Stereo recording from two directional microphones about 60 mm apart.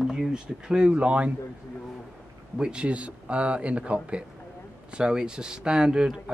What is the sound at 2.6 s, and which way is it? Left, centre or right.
Speech, centre.